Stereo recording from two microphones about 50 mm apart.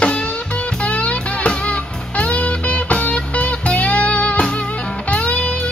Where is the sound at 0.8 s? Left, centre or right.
Left.